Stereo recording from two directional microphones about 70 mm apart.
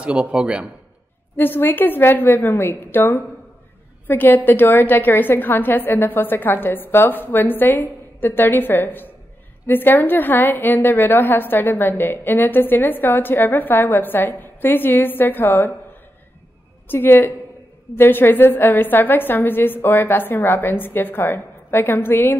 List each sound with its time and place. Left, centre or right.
0.0 s speech: centre
1.3 s a woman's voice: left